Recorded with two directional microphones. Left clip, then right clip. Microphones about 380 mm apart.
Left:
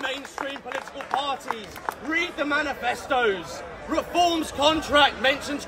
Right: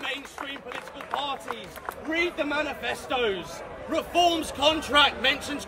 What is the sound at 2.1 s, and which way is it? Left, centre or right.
Speech, centre.